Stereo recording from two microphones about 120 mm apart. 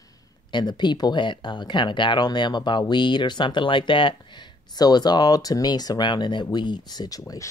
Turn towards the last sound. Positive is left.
turn(degrees=30)  # may be behind; listen again after turning